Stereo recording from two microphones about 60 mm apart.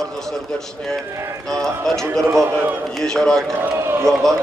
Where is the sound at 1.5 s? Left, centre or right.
Centre.